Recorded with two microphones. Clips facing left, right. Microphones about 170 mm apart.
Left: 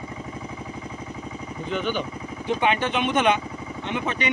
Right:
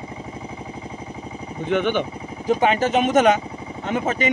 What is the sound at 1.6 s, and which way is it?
Speech, 60° right (ahead or behind).